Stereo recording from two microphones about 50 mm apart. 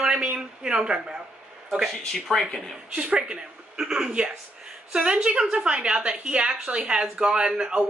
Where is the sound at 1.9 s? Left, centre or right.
Centre.